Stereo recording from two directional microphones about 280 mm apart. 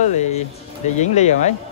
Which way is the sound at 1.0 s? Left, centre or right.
Left.